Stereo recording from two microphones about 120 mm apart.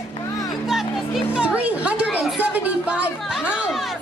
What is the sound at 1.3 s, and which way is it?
Speech, 10° right (ahead or behind).